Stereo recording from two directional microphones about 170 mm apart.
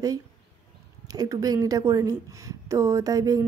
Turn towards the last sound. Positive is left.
turn(degrees=-20)  # may be behind; listen again after turning